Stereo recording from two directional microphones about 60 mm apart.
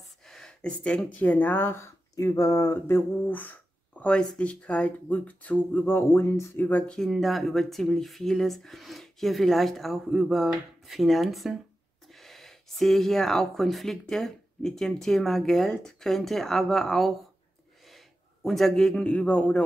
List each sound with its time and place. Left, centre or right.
0.3 s a sound: centre
1.2 s speech: left
2.1 s speech: left
3.3 s speech: left
5.9 s speech: left
6.5 s speech: left
7.1 s a man's voice: centre; by 19.6 s left